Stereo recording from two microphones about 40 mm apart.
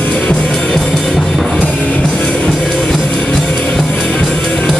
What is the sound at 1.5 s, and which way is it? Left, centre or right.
Music, left.